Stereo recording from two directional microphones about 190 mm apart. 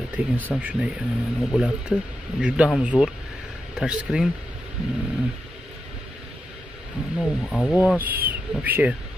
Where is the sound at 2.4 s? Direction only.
5° right (ahead or behind).